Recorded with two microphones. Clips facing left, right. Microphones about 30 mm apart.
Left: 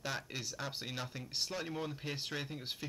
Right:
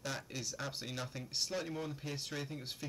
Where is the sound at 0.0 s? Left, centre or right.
Centre.